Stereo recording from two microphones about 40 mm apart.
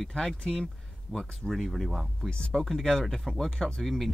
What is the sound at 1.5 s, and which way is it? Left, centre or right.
Speech, centre.